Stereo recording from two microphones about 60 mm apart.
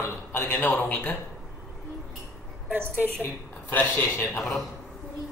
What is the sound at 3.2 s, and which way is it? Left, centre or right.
A man's voice, left.